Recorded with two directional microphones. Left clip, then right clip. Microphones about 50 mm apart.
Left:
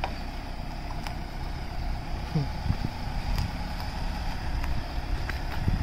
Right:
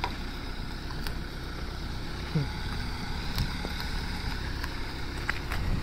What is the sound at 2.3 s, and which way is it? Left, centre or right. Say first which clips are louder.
Boat: left 1 dB; left.